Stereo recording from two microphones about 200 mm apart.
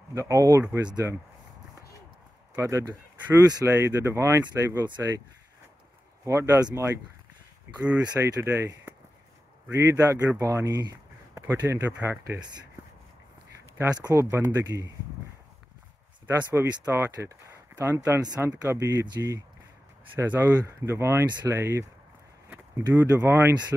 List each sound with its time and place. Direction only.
0.1 s speech: 15° right (ahead or behind)
2.5 s speech: 15° right (ahead or behind)
6.2 s speech: 15° right (ahead or behind)
13.7 s speech: 15° right (ahead or behind)
16.3 s speech: 10° right (ahead or behind)